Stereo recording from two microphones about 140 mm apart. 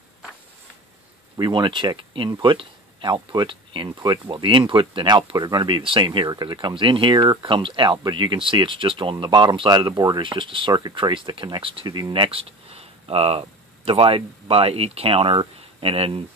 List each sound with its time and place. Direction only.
1.3 s speech: 35° right (ahead or behind)